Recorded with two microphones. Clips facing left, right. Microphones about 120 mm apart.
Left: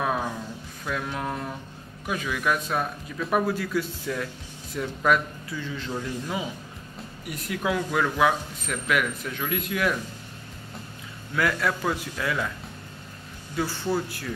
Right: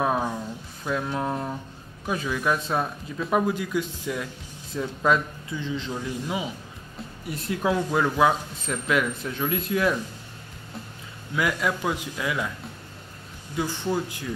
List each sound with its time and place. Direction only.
0.0 s a sound: 20° right (ahead or behind)
0.8 s a man's voice: 25° right (ahead or behind)
11.3 s a man's voice: 15° right (ahead or behind)
13.6 s a man's voice: 15° right (ahead or behind)